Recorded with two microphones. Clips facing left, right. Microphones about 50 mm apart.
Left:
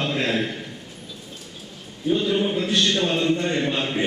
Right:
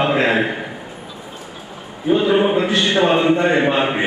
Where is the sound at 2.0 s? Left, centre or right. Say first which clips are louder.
Right 7 dB; right.